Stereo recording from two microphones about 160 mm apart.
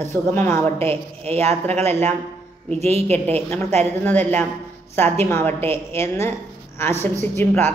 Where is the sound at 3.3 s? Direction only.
10° left (ahead or behind).